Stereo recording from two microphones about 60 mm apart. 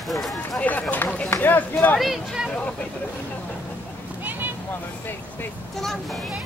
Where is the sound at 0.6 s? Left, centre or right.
Left.